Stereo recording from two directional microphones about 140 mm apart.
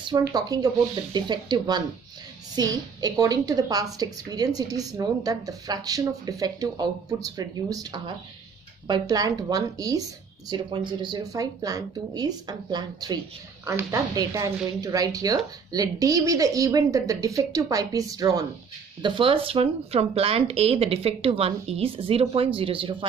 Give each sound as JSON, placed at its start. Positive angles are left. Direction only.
{"t": 0.0, "sound": "a woman's voice", "side_deg": -30}
{"t": 13.7, "sound": "a woman's voice", "side_deg": -20}
{"t": 19.0, "sound": "speech", "side_deg": -35}